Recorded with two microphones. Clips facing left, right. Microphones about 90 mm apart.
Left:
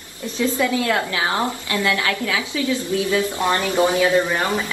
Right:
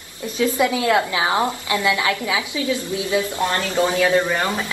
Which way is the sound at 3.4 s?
20° left (ahead or behind).